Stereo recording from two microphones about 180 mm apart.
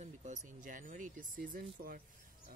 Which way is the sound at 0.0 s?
40° right (ahead or behind).